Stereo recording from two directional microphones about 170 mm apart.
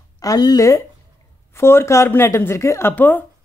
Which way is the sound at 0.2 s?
20° left (ahead or behind).